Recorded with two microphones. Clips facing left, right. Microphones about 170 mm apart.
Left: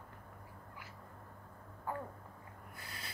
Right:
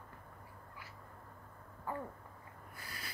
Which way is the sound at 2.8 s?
25° left (ahead or behind).